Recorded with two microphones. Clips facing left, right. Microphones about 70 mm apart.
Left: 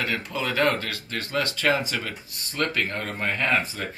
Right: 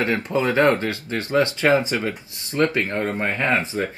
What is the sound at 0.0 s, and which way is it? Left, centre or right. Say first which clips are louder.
Speech: right 7 dB; right.